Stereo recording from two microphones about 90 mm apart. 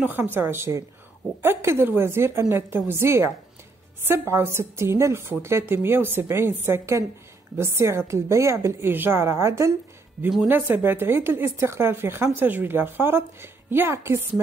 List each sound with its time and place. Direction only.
0.0 s a woman's voice: 20° right (ahead or behind)